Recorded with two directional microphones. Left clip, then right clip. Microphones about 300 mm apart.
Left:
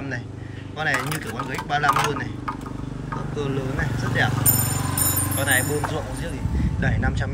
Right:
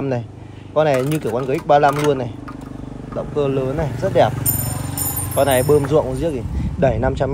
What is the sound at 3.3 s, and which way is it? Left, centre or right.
Speech, centre.